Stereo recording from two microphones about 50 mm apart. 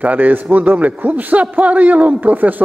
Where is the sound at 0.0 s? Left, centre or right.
Right.